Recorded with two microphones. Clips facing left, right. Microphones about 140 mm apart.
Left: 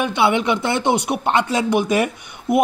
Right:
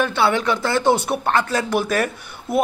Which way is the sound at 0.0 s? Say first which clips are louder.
Left 1 dB; 20° left (ahead or behind).